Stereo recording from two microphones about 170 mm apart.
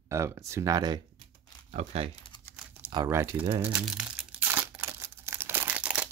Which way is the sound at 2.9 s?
20° right (ahead or behind).